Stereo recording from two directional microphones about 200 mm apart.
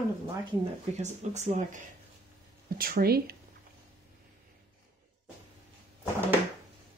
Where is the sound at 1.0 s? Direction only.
35° right (ahead or behind).